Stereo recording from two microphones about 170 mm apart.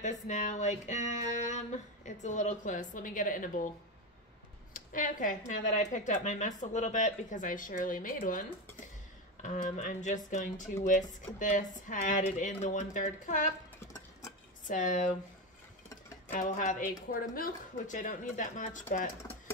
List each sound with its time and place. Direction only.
0.0 s speech: 45° left (ahead or behind)
4.7 s a woman's voice: 50° left (ahead or behind)
14.7 s speech: 50° left (ahead or behind)
16.3 s speech: 50° left (ahead or behind)